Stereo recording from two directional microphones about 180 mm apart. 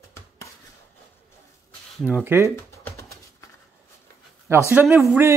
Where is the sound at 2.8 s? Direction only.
15° left (ahead or behind).